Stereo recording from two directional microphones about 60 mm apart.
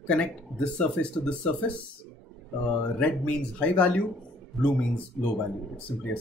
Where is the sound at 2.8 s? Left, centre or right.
Left.